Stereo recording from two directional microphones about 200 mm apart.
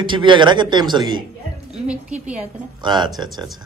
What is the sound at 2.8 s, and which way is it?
Speech, 20° right (ahead or behind).